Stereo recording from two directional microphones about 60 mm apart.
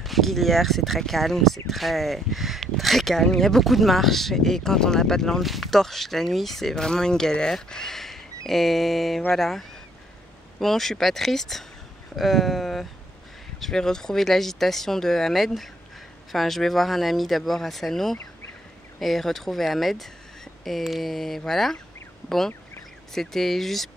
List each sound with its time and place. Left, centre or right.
0.0 s speech: centre
23.1 s speech: centre